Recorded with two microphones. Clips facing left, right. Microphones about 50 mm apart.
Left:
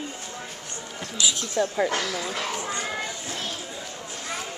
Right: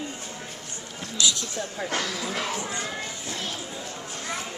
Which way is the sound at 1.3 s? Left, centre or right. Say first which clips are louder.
Left 7 dB; left.